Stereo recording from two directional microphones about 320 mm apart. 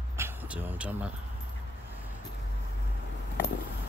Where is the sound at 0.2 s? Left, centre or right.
Centre.